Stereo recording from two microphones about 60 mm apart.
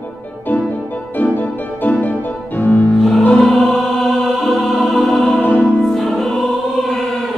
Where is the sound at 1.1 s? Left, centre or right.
Left.